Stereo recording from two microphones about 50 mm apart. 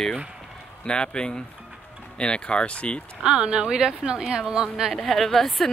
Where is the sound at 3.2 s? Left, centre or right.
Centre.